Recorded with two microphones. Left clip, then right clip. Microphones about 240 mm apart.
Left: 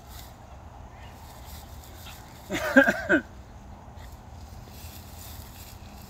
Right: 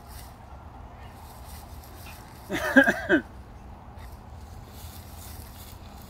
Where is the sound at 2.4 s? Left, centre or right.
Left.